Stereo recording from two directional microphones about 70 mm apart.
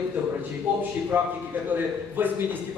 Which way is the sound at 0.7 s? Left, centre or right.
Right.